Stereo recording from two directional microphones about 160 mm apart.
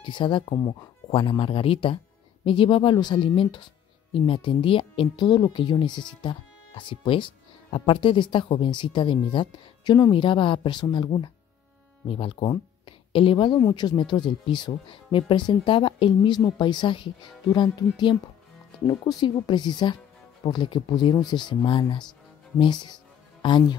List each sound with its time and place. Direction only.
0.0 s speech: 30° left (ahead or behind)
23.4 s speech: 30° left (ahead or behind)